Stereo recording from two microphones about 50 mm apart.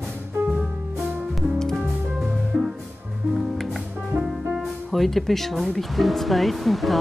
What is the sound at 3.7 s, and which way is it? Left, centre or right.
Speech, centre.